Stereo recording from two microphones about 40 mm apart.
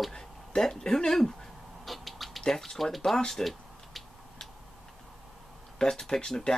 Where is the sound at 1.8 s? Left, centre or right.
Centre.